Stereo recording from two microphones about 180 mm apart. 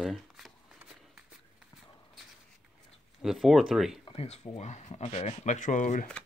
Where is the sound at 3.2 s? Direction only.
Centre (ahead or behind).